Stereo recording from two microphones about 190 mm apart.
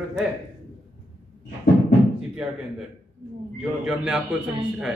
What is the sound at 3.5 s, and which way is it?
Speech, 5° right (ahead or behind).